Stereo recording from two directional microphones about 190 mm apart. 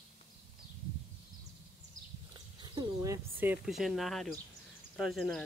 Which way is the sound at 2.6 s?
20° right (ahead or behind).